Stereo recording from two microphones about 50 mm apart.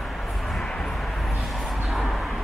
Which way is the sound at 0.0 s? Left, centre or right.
Centre.